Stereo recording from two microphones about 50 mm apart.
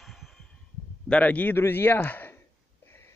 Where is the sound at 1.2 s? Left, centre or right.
Left.